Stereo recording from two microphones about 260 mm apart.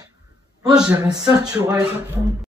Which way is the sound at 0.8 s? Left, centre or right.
Centre.